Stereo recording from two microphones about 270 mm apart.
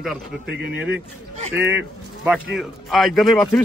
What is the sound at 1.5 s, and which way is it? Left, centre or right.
A man's voice, centre.